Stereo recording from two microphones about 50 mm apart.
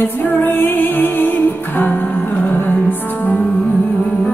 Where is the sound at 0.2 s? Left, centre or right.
Left.